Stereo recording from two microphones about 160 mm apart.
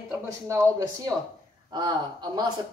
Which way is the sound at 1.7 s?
25° right (ahead or behind).